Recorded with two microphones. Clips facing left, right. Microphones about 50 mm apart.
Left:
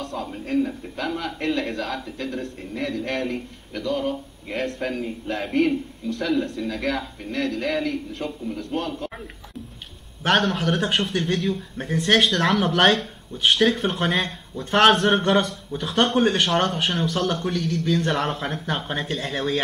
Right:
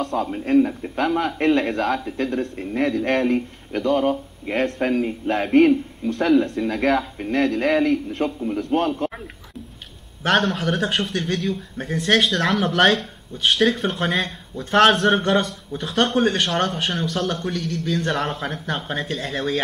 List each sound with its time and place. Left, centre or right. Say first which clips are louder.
0.0 s speech: right 7 dB; right
10.2 s a man's voice: right 1 dB; centre